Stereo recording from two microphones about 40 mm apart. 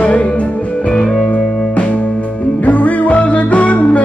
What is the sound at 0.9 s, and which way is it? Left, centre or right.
Music, centre.